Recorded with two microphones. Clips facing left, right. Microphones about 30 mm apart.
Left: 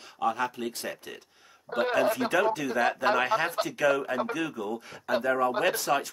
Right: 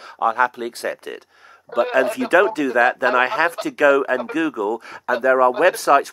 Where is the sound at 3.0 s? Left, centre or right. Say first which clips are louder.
Right 8 dB; right.